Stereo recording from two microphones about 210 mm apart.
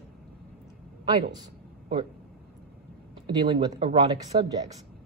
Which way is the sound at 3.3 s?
20° right (ahead or behind).